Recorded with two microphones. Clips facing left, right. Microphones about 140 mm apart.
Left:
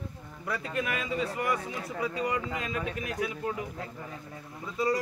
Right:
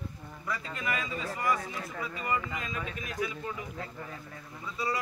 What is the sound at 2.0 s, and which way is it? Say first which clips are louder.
Speech: left 3 dB; 70° left (ahead or behind).